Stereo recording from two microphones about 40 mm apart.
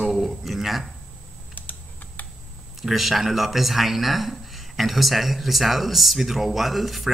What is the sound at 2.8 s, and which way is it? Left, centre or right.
Speech, centre.